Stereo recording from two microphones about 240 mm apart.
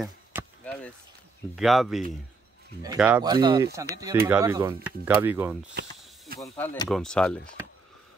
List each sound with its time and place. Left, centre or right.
0.0 s chop: centre
1.5 s speech: centre
5.8 s snake: right
6.4 s speech: centre